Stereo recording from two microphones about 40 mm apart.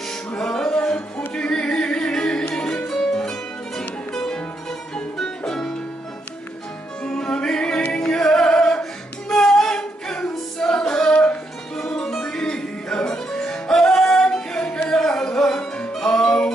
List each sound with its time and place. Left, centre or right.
0.4 s music: centre
2.9 s music: centre
7.0 s music: left
9.3 s a capella: centre
10.9 s a sound: left
11.7 s music: centre
14.6 s music: left
15.0 s music: centre